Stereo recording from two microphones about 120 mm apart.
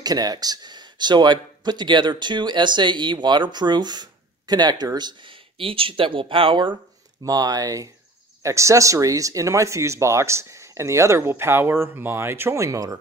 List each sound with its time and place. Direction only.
0.0 s speech: 35° right (ahead or behind)
7.2 s speech: 30° right (ahead or behind)